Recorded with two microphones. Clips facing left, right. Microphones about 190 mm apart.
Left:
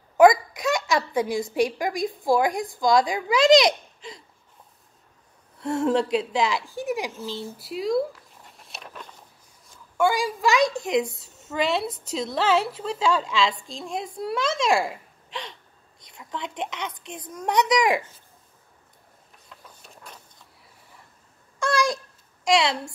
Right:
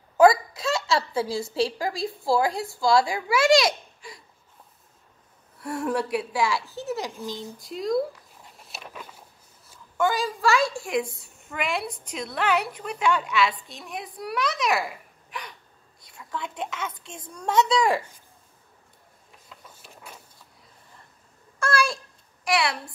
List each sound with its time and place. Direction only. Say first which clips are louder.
0.2 s a child's voice: left 1 dB; 15° left (ahead or behind)
5.6 s a woman's voice: left 5 dB; 25° left (ahead or behind)
7.2 s speech: left 1 dB; 15° right (ahead or behind)
7.5 s zipper: left 1 dB; 5° left (ahead or behind)
9.9 s a woman's voice: left 2 dB; 10° left (ahead or behind)
19.6 s printer: even; 5° right (ahead or behind)
21.5 s a sound: left 2 dB; 15° left (ahead or behind)